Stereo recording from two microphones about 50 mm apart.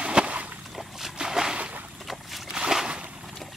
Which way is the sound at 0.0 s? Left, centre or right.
Right.